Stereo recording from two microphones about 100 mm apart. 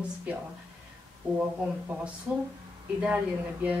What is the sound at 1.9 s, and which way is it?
Speech, 15° right (ahead or behind).